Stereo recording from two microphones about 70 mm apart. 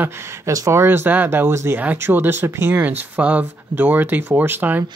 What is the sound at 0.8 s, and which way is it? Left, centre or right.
Speech, right.